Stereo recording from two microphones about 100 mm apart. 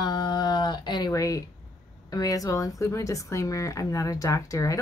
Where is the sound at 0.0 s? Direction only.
50° left (ahead or behind).